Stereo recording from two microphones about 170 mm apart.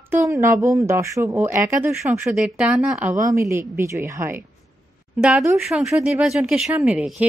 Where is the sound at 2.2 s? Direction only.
5° right (ahead or behind).